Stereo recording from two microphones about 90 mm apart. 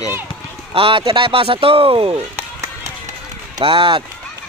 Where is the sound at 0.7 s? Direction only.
85° right.